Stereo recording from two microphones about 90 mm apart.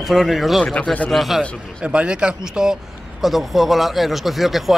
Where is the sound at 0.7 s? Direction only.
15° left (ahead or behind).